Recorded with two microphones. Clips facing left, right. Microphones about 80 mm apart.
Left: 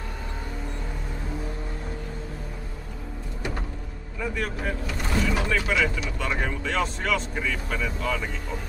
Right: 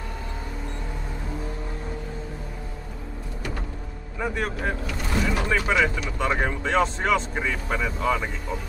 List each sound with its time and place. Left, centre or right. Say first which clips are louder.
4.2 s speech: right 2 dB; right
5.1 s speech: even; centre
5.4 s speech: right 2 dB; right